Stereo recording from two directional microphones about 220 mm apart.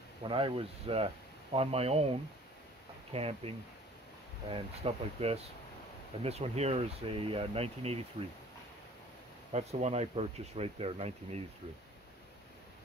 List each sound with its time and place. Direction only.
0.2 s speech: 25° right (ahead or behind)
9.5 s speech: 30° right (ahead or behind)